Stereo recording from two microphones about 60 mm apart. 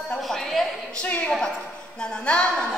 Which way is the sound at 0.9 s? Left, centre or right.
Left.